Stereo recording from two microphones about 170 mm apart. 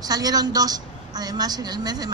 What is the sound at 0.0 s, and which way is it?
A woman's voice, 20° right (ahead or behind).